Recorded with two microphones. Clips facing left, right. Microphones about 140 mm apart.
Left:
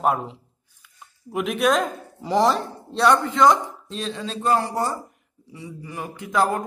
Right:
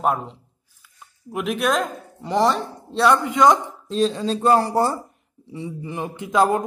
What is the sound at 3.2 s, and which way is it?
Speech, 15° right (ahead or behind).